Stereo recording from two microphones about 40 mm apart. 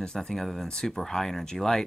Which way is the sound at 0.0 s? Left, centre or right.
Centre.